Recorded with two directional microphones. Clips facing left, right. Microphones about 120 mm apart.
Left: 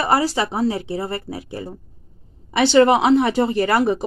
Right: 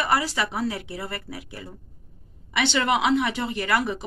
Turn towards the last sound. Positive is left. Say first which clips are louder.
# left 7 dB
turn(degrees=35)  # may be behind; listen again after turning